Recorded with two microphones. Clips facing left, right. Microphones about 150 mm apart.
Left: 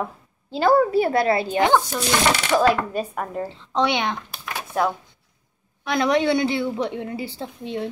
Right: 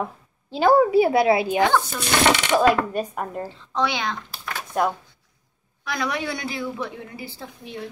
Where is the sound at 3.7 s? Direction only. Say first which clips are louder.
Left 3 dB; 20° left (ahead or behind).